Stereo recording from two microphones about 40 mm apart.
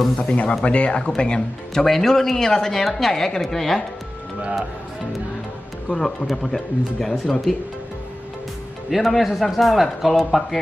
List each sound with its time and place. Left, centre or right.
0.3 s speech: left; by 3.8 s centre
5.9 s speech: centre
8.9 s speech: centre